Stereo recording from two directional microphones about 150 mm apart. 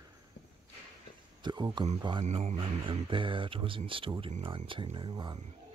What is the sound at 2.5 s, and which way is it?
Speech, 35° right (ahead or behind).